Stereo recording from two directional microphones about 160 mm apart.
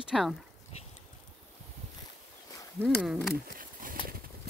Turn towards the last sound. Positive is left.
turn(degrees=-60)  # may be behind; listen again after turning